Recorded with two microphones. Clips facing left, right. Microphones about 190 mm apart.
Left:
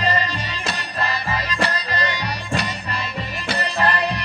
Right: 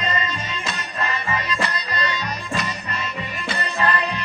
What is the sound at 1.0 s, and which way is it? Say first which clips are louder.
Music: even; 35° left (ahead or behind).